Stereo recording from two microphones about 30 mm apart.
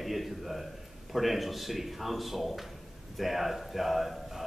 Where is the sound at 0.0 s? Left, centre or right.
Centre.